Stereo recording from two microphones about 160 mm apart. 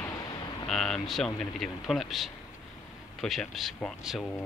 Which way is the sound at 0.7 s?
Centre (ahead or behind).